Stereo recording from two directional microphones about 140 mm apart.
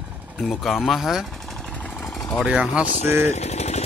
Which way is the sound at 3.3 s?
50° left (ahead or behind).